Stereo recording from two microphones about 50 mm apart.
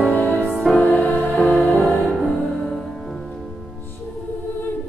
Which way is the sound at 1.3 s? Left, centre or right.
Centre.